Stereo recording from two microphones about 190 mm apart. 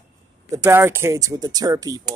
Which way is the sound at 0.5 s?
10° right (ahead or behind).